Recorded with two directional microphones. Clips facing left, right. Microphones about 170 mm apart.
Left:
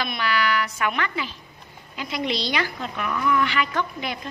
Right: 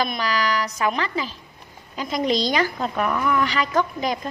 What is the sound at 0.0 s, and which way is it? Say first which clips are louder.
A woman's voice: right 2 dB; 40° right (ahead or behind).